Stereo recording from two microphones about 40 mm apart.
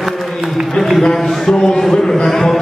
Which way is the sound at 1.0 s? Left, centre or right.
Centre.